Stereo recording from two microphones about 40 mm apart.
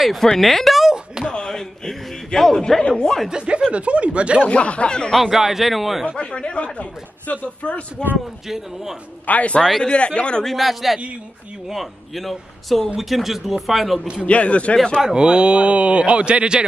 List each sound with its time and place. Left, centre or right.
0.0 s speech: centre
1.4 s a sound: centre
3.3 s speech: right
4.5 s speech: left
5.2 s a man's voice: centre
6.0 s speech: left
9.2 s speech: left
9.6 s speech: centre
9.8 s speech: left
10.4 s a man's voice: centre
14.2 s speech: left
15.0 s speech: centre